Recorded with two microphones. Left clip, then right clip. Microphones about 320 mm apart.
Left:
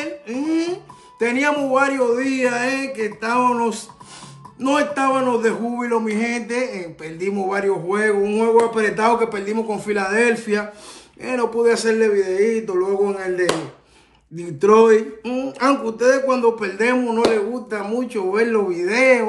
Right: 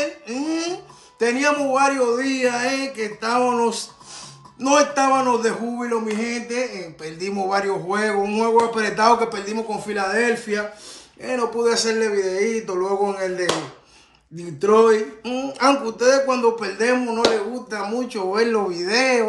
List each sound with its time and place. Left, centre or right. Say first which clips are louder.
0.3 s a sound: left 3 dB; centre
1.2 s a man's voice: even; centre
14.6 s a man's voice: left 2 dB; centre